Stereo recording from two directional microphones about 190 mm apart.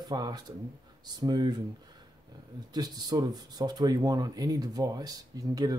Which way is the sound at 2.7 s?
20° right (ahead or behind).